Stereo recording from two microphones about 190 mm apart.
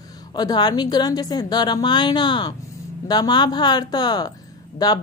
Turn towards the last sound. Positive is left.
turn(degrees=20)  # may be behind; listen again after turning